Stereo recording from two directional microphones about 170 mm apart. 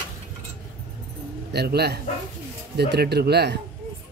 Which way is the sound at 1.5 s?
70° right (ahead or behind).